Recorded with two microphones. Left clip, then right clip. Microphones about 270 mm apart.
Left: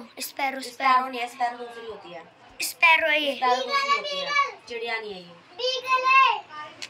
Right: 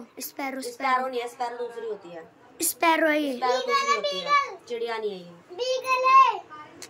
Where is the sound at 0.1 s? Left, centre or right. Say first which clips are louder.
Left 5 dB; centre.